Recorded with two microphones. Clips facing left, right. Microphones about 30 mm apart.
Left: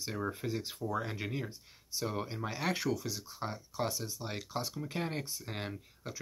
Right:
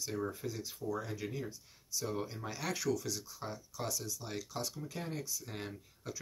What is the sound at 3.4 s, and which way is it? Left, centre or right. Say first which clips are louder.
Speech: left 5 dB; left.